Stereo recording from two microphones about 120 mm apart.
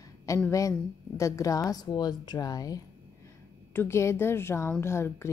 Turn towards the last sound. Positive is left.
turn(degrees=20)  # may be behind; listen again after turning